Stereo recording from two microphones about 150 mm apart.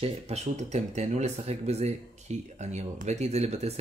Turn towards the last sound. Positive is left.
turn(degrees=-45)  # may be behind; listen again after turning